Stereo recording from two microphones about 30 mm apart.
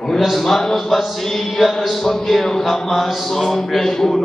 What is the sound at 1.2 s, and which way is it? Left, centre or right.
Mantra, centre.